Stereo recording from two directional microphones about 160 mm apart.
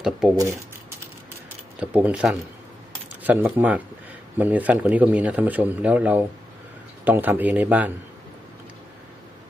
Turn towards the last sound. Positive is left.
turn(degrees=-10)  # may be behind; listen again after turning